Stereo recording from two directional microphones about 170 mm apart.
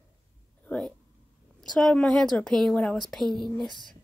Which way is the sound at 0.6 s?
5° left (ahead or behind).